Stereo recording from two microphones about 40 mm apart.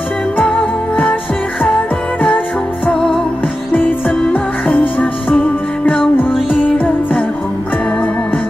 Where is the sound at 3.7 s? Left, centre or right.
Left.